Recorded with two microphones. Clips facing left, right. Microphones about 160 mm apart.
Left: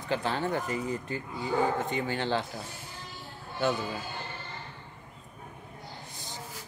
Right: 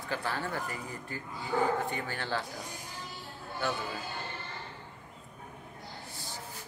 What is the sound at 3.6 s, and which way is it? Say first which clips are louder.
Speech: left 6 dB; 20° left (ahead or behind).